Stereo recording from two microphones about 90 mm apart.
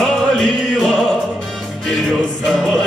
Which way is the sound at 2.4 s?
5° left (ahead or behind).